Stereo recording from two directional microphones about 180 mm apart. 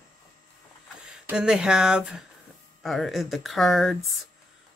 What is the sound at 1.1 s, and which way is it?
Speech, 5° right (ahead or behind).